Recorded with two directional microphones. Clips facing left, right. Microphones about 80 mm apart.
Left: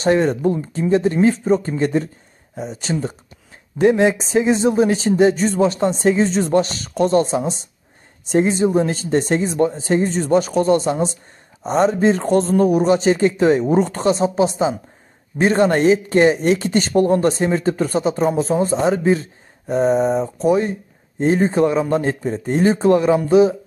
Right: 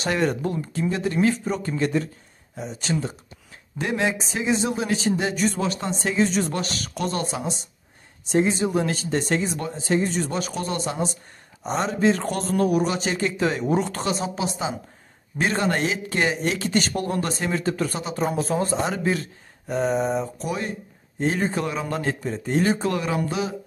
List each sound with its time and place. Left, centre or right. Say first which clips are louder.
0.0 s speech: left 7 dB; left
0.7 s speech: left 6 dB; left
19.7 s speech: left 6 dB; left